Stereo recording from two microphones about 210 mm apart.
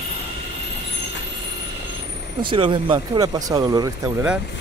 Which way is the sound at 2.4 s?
25° right (ahead or behind).